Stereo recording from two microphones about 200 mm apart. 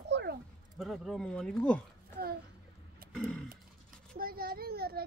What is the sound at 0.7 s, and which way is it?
Speech, centre (ahead or behind).